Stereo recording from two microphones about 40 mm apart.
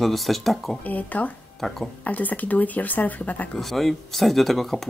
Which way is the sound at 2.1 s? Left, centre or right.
Left.